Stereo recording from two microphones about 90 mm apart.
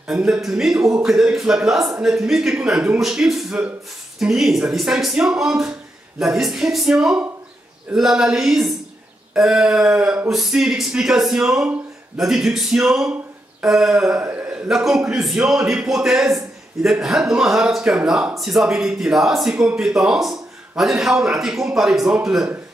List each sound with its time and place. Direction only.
0.1 s a man's voice: 5° right (ahead or behind)
14.2 s a sound: 15° right (ahead or behind)
14.7 s a man's voice: 5° right (ahead or behind)